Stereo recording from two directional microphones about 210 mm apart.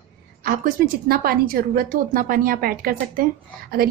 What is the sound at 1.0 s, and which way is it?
A woman's voice, 45° right (ahead or behind).